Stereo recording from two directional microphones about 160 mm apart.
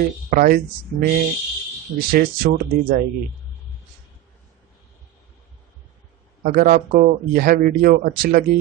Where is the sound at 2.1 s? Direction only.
70° right (ahead or behind).